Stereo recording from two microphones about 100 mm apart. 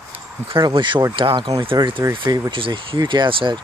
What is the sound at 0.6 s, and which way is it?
Speech, 50° right (ahead or behind).